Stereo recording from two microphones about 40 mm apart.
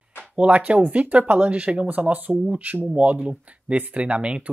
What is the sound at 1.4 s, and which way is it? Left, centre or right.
Speech, right.